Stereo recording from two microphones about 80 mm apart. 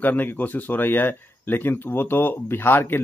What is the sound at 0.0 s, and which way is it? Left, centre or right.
A man's voice, left.